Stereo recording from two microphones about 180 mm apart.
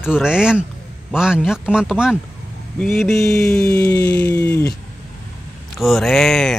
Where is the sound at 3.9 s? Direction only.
65° left (ahead or behind).